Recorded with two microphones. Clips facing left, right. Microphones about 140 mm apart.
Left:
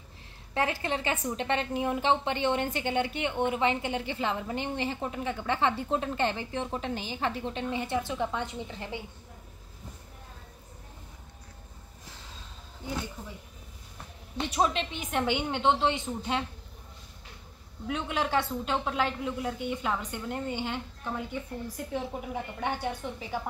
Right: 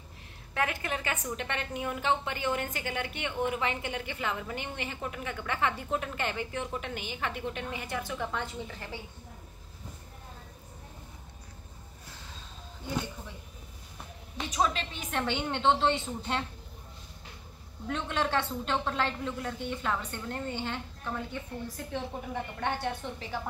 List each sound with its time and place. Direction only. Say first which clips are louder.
0.6 s a woman's voice: left 3 dB; 30° left (ahead or behind)
14.3 s a woman's voice: left 2 dB; 25° left (ahead or behind)
17.8 s a woman's voice: left 1 dB; 10° left (ahead or behind)